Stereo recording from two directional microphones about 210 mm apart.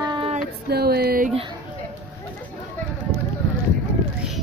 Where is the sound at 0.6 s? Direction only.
50° right (ahead or behind).